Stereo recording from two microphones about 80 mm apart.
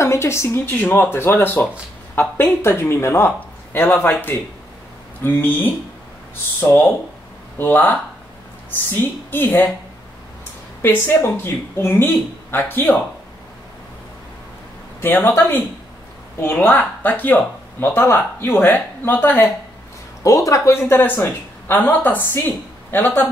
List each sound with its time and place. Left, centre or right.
0.0 s speech: left
0.7 s speech: left
6.6 s speech: left
10.8 s speech: left
15.0 s speech: left
20.2 s speech: left
20.9 s speech: left